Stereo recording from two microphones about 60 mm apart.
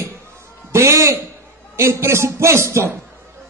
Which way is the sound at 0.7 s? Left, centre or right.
Right.